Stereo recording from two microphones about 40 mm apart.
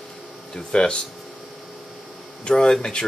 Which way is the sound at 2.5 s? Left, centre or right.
Left.